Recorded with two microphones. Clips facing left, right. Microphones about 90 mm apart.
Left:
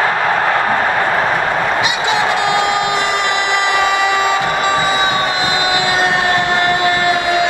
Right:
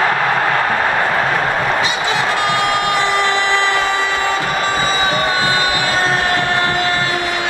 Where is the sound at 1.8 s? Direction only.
20° left (ahead or behind).